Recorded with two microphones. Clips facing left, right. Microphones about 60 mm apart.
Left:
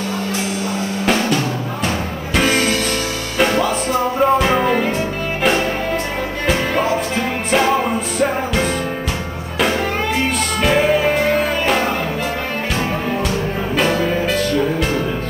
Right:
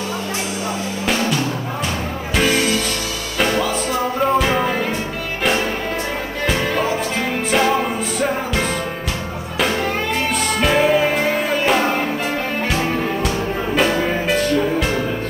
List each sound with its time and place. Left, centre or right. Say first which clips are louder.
2.3 s music: left 1 dB; centre
6.4 s music: left 1 dB; centre
13.9 s music: left 1 dB; centre
14.8 s music: left 1 dB; centre